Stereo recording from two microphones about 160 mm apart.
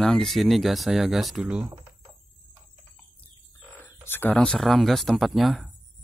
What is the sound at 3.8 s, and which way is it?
Speech, 15° left (ahead or behind).